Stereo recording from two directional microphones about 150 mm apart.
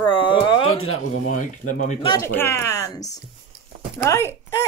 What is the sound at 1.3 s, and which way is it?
Speech, 55° left (ahead or behind).